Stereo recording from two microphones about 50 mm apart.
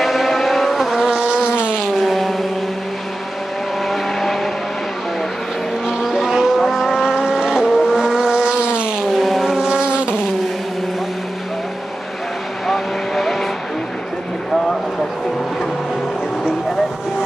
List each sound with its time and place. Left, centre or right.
0.0 s vehicle: centre
0.9 s insect: centre
2.0 s vehicle: centre
3.9 s vehicle: centre
6.0 s vehicle: centre
9.1 s vehicle: centre
9.6 s vehicle: centre
12.6 s vehicle: centre